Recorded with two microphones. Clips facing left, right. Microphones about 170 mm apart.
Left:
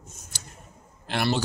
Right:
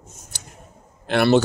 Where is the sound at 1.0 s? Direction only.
60° right (ahead or behind).